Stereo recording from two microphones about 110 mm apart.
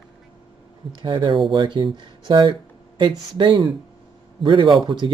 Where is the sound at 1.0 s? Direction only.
50° right (ahead or behind).